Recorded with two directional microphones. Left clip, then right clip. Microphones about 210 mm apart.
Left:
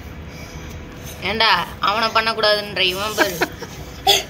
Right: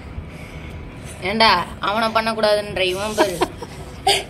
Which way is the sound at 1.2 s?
40° right (ahead or behind).